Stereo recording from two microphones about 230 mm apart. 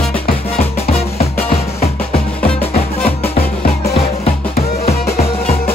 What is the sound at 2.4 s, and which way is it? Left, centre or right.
Music, centre.